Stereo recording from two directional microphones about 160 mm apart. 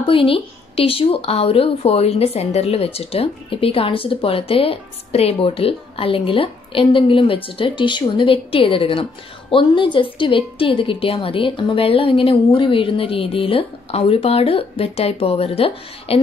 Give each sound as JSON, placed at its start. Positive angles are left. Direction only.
{"t": 0.0, "sound": "speech", "side_deg": 35}